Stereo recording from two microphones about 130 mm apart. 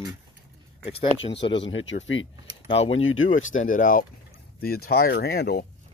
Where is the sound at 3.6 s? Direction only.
90° left.